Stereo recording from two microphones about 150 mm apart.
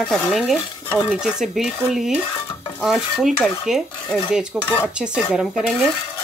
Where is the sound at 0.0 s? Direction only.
Centre (ahead or behind).